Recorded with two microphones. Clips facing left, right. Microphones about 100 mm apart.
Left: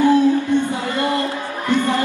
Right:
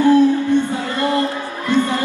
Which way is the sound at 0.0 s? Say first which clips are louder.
Right 2 dB; 15° left (ahead or behind).